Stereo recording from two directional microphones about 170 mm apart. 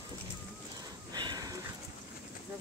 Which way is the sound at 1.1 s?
25° right (ahead or behind).